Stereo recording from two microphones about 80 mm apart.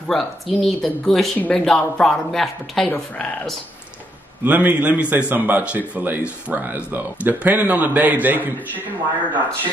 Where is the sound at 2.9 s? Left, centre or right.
Centre.